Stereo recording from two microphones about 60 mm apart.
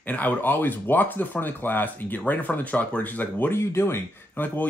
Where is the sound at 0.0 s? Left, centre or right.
Left.